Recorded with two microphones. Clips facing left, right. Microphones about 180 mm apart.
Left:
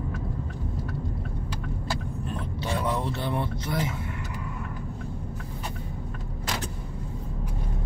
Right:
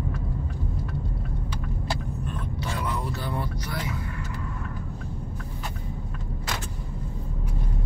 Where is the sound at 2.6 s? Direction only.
25° left (ahead or behind).